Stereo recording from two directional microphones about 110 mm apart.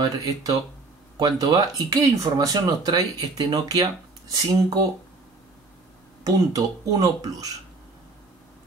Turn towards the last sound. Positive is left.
turn(degrees=-30)  # may be behind; listen again after turning